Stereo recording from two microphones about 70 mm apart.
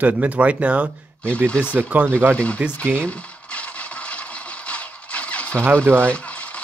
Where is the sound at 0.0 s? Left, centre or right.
Right.